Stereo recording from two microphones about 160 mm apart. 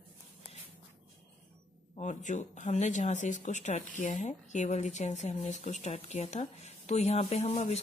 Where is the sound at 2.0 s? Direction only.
50° left (ahead or behind).